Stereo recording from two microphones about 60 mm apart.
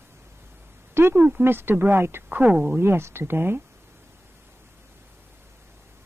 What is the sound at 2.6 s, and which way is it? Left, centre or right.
Speech, right.